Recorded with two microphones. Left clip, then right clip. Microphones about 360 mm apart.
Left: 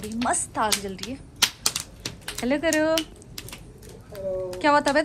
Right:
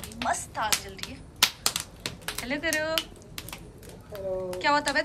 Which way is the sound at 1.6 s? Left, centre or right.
Centre.